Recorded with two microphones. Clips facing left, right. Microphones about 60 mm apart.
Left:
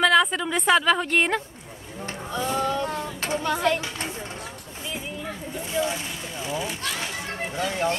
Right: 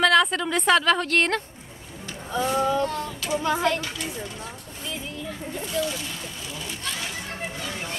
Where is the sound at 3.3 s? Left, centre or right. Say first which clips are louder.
Right 1 dB; centre.